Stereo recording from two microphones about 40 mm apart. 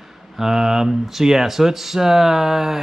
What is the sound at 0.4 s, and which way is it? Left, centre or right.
Speech, centre.